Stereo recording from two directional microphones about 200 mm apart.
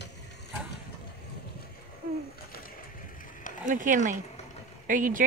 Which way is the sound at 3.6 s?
40° right (ahead or behind).